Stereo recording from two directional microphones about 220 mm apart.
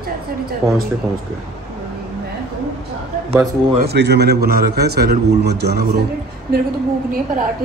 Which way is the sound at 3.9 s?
50° right (ahead or behind).